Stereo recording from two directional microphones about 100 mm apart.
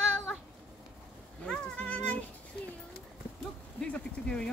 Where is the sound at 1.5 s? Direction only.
10° left (ahead or behind).